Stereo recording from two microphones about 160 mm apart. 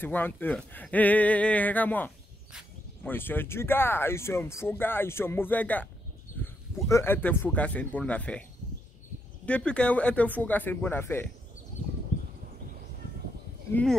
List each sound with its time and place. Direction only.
0.0 s speech: 10° left (ahead or behind)
6.4 s a sound: 10° left (ahead or behind)
6.9 s speech: 15° left (ahead or behind)
9.5 s speech: 5° left (ahead or behind)